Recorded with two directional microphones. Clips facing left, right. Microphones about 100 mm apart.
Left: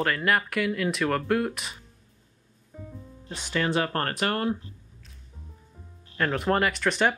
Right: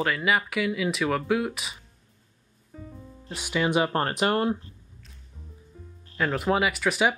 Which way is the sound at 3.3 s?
10° right (ahead or behind).